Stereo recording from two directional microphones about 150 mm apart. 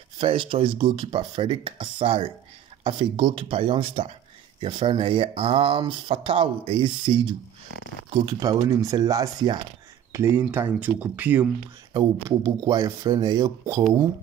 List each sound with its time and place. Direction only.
0.2 s speech: 35° right (ahead or behind); by 11.4 s 10° right (ahead or behind)
11.9 s speech: 25° right (ahead or behind)